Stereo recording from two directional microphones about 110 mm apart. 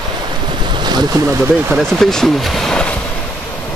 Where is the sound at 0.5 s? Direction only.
45° right (ahead or behind).